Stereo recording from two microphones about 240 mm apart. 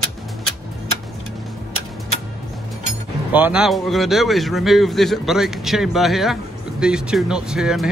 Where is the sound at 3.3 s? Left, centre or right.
Centre.